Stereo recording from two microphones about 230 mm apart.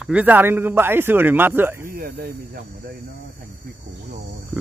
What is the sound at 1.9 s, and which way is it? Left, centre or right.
Speech, right.